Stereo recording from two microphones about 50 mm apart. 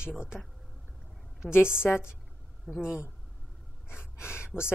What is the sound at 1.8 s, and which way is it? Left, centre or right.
Speech, left.